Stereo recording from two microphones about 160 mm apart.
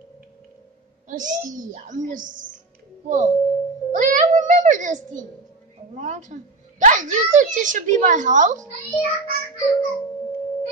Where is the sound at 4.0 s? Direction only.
50° right (ahead or behind).